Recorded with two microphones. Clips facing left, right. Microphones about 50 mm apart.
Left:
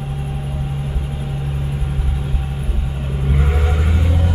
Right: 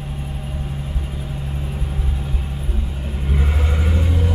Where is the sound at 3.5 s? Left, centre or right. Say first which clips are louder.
Left 2 dB; centre.